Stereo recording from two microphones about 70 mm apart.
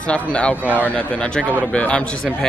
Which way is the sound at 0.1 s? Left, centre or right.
Centre.